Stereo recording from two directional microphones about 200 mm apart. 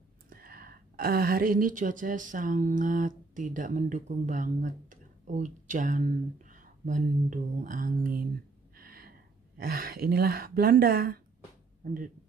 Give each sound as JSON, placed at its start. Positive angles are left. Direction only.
{"t": 0.3, "sound": "speech", "side_deg": -45}
{"t": 8.7, "sound": "a sound", "side_deg": -50}
{"t": 9.6, "sound": "speech", "side_deg": -45}